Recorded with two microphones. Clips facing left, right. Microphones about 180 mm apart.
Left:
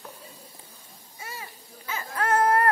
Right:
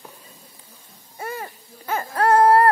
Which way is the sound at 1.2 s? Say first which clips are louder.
Right 10 dB; 55° right (ahead or behind).